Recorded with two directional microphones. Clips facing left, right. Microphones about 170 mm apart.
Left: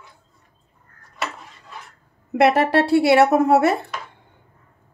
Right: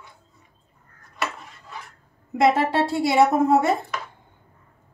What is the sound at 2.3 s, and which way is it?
A woman's voice, 70° left (ahead or behind).